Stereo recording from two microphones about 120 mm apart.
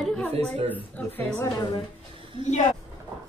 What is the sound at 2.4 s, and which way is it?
Speech, 85° left.